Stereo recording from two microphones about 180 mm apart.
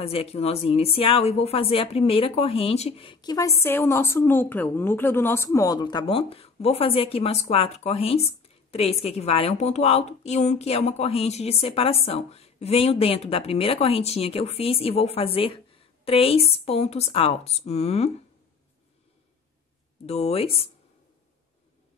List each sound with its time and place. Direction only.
0.0 s a woman's voice: 35° left (ahead or behind)
20.1 s a woman's voice: 35° left (ahead or behind)